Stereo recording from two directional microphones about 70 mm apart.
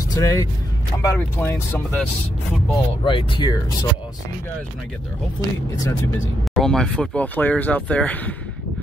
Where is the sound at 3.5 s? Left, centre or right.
Left.